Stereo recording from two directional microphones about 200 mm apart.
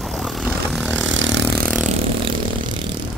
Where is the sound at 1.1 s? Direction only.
65° right (ahead or behind).